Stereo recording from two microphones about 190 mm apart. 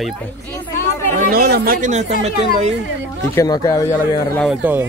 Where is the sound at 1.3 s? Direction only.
55° right (ahead or behind).